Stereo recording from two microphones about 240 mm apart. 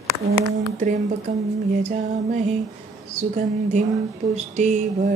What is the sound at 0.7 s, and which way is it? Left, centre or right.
Music, right.